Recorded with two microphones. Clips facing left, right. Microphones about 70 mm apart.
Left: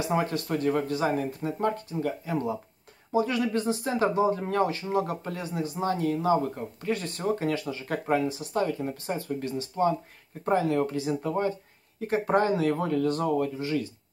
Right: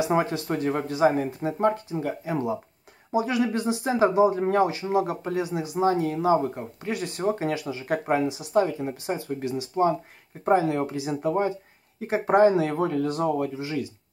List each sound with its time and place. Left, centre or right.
0.2 s speech: right